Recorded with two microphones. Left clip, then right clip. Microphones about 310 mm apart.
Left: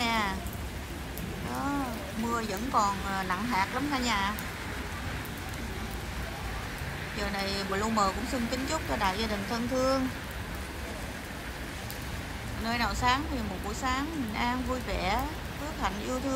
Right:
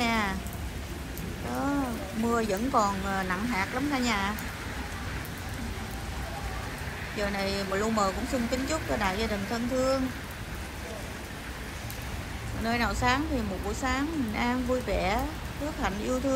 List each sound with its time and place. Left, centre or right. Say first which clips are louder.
0.0 s a sound: right 1 dB; centre
2.3 s speech: right 2 dB; centre
7.2 s speech: right 3 dB; centre
12.6 s speech: right 1 dB; centre